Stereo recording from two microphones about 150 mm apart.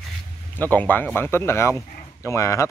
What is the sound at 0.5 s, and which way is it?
Speech, 10° left (ahead or behind).